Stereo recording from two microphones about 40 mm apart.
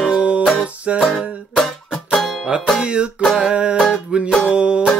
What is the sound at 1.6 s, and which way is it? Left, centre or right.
Music, centre.